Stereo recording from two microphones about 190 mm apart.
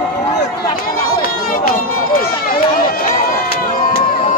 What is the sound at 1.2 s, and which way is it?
Crowd, 50° left (ahead or behind).